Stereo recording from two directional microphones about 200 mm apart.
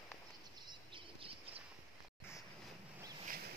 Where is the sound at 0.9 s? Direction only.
25° right (ahead or behind).